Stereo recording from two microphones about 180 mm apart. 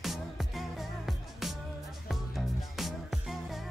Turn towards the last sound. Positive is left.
turn(degrees=0)  # may be behind; listen again after turning